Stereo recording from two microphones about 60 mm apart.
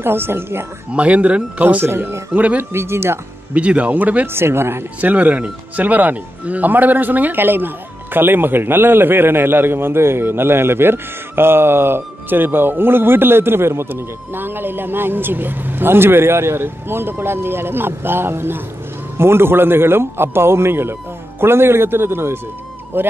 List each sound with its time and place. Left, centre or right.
0.0 s speech: right
0.9 s speech: right
1.9 s a man's voice: right
2.3 s speech: right
2.7 s a man's voice: right
3.5 s speech: right
4.3 s a man's voice: right
5.1 s a man's voice: right